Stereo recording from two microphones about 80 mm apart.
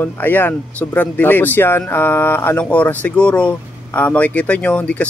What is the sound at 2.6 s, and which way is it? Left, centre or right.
Speech, centre.